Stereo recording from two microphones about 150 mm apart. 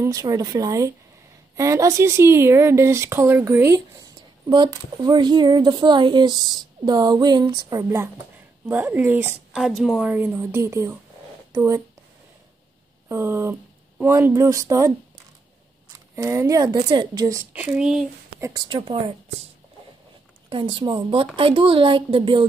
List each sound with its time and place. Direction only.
0.0 s speech: 25° right (ahead or behind)
4.5 s speech: 30° right (ahead or behind)
8.6 s speech: 15° right (ahead or behind)
10.0 s speech: 10° right (ahead or behind)
13.1 s speech: 15° right (ahead or behind)
16.2 s speech: 20° right (ahead or behind)
17.6 s speech: 5° right (ahead or behind)
18.4 s a woman's voice: 25° right (ahead or behind)
20.4 s a woman's voice: 35° right (ahead or behind)